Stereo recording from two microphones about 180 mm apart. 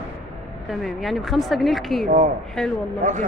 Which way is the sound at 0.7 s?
Centre (ahead or behind).